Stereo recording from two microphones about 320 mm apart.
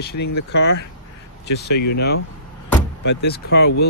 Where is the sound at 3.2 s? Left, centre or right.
Left.